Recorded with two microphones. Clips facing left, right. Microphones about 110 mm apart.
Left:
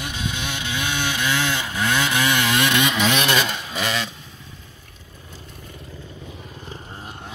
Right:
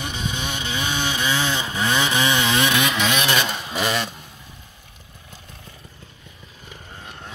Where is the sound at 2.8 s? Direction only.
Centre (ahead or behind).